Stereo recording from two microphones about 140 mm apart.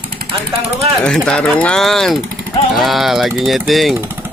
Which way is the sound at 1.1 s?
5° left (ahead or behind).